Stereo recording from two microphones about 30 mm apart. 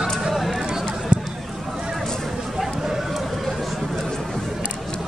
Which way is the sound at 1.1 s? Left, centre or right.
Right.